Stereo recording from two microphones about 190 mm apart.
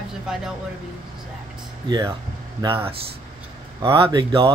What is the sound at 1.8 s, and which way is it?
Speech, 20° right (ahead or behind).